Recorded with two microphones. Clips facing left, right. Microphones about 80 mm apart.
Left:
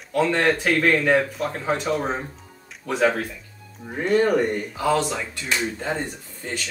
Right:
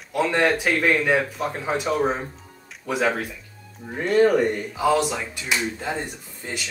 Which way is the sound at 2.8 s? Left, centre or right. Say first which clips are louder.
Left 2 dB; centre.